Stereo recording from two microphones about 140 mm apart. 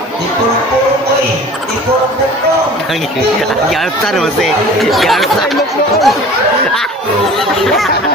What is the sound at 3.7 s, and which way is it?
Speech, centre (ahead or behind).